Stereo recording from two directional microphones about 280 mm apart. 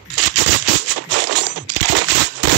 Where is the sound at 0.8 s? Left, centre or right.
Right.